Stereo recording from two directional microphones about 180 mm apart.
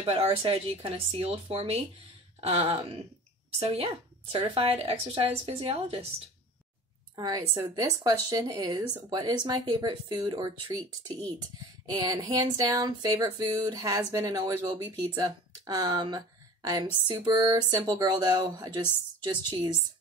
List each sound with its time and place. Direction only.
0.0 s a woman's voice: 30° right (ahead or behind)
7.2 s speech: 20° right (ahead or behind)
11.8 s speech: 20° right (ahead or behind)